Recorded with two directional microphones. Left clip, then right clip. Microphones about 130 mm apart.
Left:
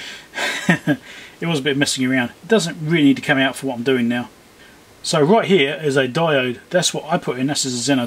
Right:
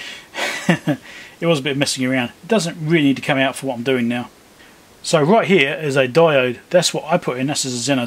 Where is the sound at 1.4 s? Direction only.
15° right (ahead or behind).